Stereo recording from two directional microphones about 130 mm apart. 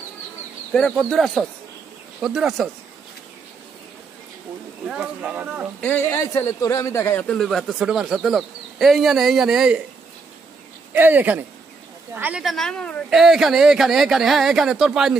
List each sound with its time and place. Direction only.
0.7 s speech: 5° left (ahead or behind)
4.8 s speech: 5° right (ahead or behind)
5.8 s speech: 10° left (ahead or behind)
6.1 s a man's voice: 25° left (ahead or behind)
7.3 s speech: centre (ahead or behind)
10.9 s speech: 15° right (ahead or behind)
12.4 s speech: 5° left (ahead or behind)